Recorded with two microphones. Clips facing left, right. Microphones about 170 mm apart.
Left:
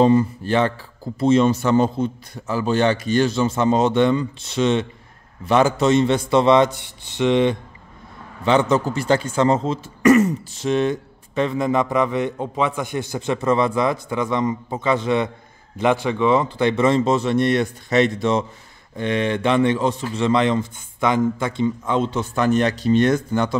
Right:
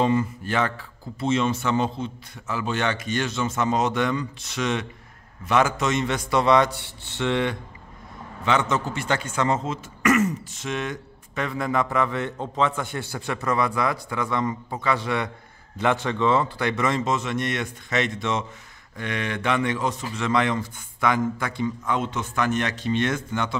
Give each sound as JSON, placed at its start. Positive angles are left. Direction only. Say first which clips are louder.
{"t": 0.0, "sound": "a man's voice", "louder": "left 7 dB", "side_deg": 35}
{"t": 8.5, "sound": "a man's voice", "louder": "left 6 dB", "side_deg": 35}